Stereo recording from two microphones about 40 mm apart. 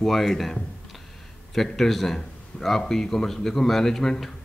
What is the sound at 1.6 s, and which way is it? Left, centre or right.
Speech, centre.